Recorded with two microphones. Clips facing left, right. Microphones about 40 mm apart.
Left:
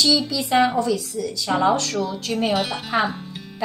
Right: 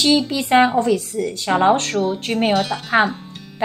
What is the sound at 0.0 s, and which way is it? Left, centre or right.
Speech, right.